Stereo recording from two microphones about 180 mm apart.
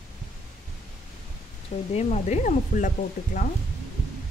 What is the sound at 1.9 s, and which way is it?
Speech, 40° left (ahead or behind).